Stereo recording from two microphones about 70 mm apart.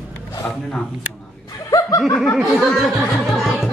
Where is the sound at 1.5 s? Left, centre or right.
Left.